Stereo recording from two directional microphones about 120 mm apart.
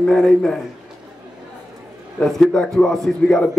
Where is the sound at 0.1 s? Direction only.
5° left (ahead or behind).